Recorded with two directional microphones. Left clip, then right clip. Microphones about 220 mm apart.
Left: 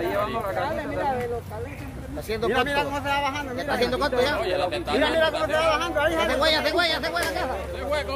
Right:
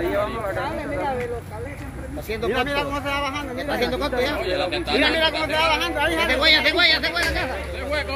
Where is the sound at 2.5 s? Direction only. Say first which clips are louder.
Right 1 dB; 40° left (ahead or behind).